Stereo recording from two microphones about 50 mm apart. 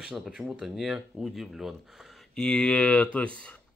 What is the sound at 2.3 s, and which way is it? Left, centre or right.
Speech, centre.